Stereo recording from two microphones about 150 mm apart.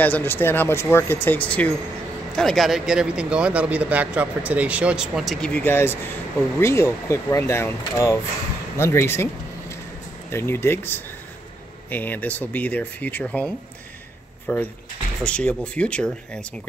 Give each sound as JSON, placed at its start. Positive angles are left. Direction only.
{"t": 0.0, "sound": "speech", "side_deg": 15}
{"t": 14.5, "sound": "speech", "side_deg": 15}